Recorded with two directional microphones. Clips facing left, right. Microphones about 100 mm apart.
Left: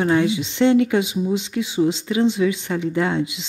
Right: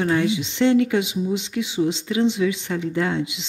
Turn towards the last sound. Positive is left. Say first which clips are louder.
# left 2 dB
turn(degrees=35)  # may be behind; listen again after turning